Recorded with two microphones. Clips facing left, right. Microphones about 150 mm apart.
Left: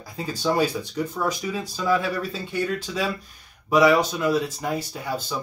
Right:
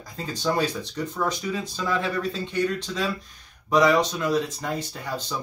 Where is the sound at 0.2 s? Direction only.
10° left (ahead or behind).